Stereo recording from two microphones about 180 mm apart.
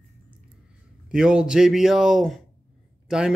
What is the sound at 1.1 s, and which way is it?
Speech, 5° right (ahead or behind).